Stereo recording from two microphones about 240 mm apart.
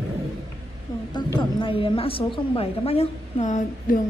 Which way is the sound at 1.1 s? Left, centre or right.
Centre.